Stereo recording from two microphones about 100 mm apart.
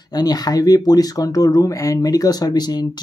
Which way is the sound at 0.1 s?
40° left (ahead or behind).